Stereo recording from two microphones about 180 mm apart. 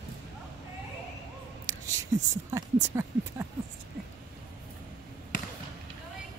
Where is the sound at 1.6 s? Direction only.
15° right (ahead or behind).